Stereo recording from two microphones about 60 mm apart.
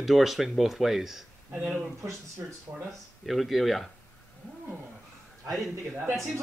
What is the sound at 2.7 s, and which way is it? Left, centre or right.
Speech, right.